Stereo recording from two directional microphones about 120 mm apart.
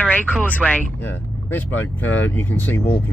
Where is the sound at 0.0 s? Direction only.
10° left (ahead or behind).